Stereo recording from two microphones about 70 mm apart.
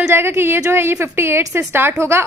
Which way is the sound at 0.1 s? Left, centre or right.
Right.